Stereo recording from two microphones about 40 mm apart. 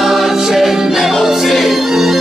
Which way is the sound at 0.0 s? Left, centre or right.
Centre.